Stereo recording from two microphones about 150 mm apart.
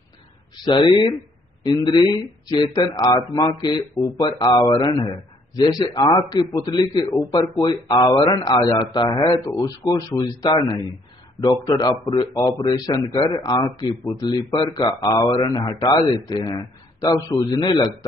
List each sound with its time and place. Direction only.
0.7 s a man's voice: 30° left (ahead or behind)
14.2 s a man's voice: 30° left (ahead or behind)